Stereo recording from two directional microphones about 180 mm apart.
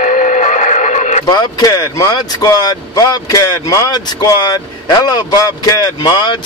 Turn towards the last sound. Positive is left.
turn(degrees=25)  # may be behind; listen again after turning